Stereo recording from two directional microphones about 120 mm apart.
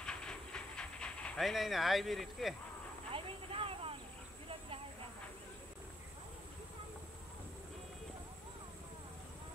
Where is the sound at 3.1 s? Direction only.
50° right (ahead or behind).